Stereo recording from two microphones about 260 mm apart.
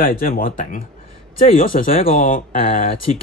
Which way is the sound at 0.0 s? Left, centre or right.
Left.